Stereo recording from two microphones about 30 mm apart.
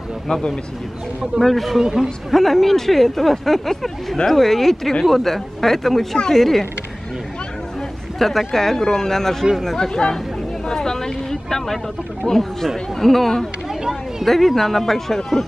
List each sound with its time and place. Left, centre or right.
1.4 s speech: centre
1.8 s speech: centre
2.3 s speech: centre
8.2 s speech: centre
8.7 s speech: centre
9.8 s speech: left
10.7 s vehicle: centre
12.2 s speech: centre